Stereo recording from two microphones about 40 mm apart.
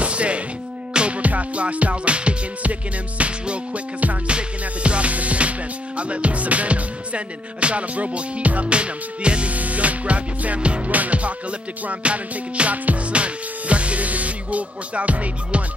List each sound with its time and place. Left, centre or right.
0.0 s music: right